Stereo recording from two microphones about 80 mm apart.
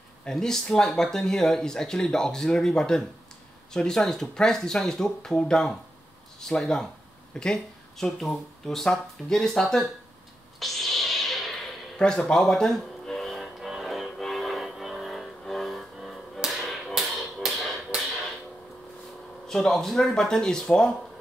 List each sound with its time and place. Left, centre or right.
0.2 s speech: centre
10.6 s a sound: centre
16.4 s music: centre
19.4 s speech: centre